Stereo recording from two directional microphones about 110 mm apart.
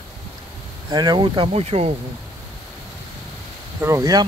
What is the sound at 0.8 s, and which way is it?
Speech, 40° right (ahead or behind).